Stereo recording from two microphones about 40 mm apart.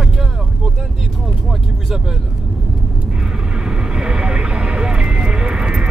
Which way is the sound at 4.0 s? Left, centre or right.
Right.